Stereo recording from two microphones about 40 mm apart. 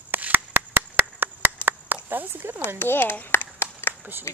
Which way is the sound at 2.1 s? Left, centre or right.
Right.